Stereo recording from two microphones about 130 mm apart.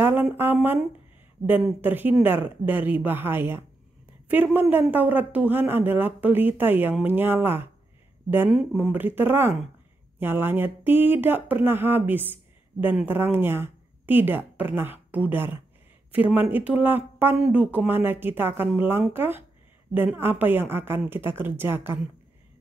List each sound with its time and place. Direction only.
0.0 s a sound: 15° right (ahead or behind)
1.4 s speech: 15° right (ahead or behind)
8.7 s speech: 15° right (ahead or behind)